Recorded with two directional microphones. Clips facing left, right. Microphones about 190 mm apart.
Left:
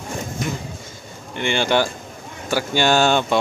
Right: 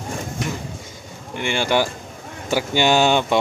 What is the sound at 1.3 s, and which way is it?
Speech, 5° right (ahead or behind).